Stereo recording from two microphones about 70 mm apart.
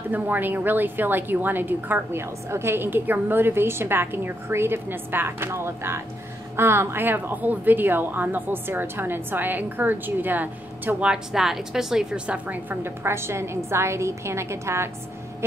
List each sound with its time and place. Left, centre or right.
0.1 s a woman's voice: right
11.1 s a woman's voice: centre
12.4 s a woman's voice: right